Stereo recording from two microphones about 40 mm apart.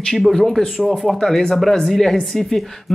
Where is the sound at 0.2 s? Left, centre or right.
Centre.